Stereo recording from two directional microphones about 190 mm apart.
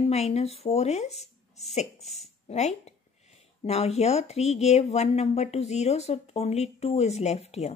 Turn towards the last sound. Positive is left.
turn(degrees=35)  # may be behind; listen again after turning